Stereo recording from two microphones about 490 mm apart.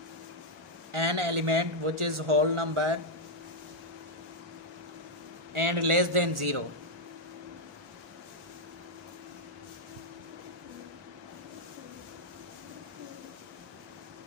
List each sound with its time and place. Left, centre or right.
0.9 s a man's voice: right
5.5 s a man's voice: right